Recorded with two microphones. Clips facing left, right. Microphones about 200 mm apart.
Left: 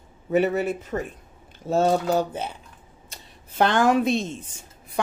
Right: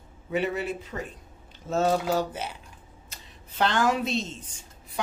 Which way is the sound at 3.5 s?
50° left (ahead or behind).